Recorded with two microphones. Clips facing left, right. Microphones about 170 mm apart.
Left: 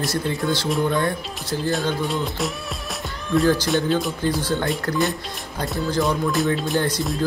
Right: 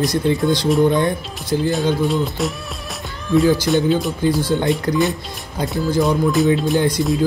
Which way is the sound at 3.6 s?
Centre (ahead or behind).